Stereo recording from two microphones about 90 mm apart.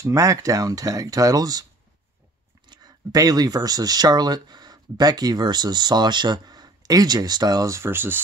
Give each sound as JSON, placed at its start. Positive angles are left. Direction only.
{"t": 0.0, "sound": "speech", "side_deg": -40}
{"t": 2.7, "sound": "speech", "side_deg": -45}